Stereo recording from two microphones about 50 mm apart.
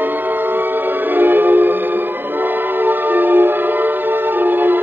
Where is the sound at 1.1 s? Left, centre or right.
Right.